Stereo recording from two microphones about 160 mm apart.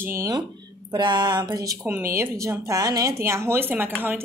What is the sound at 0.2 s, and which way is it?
Speech, 25° right (ahead or behind).